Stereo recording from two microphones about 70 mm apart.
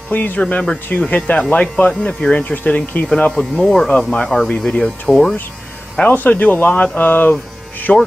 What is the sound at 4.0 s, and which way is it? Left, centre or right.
Speech, centre.